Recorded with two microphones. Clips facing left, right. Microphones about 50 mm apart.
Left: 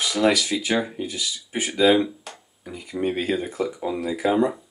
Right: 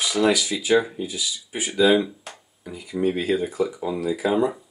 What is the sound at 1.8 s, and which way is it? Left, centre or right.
Speech, left.